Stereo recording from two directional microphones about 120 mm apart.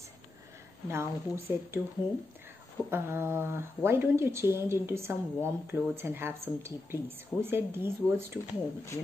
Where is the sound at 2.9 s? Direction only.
20° right (ahead or behind).